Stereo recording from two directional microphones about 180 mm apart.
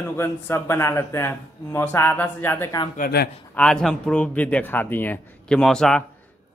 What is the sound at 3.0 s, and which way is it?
Speech, 60° left (ahead or behind).